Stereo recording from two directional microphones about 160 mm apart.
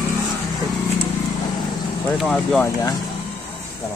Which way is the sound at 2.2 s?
Centre (ahead or behind).